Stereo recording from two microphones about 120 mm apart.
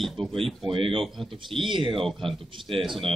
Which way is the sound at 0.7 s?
45° right (ahead or behind).